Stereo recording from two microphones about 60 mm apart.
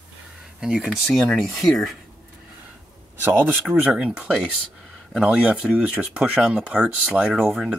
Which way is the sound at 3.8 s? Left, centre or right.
Centre.